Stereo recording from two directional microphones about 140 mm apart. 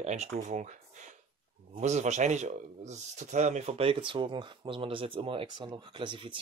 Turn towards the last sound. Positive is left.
turn(degrees=-35)  # may be behind; listen again after turning